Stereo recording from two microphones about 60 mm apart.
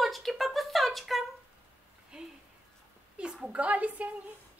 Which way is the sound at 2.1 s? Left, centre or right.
Centre.